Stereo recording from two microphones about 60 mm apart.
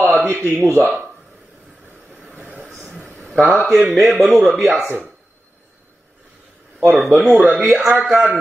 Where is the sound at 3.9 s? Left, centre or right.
Centre.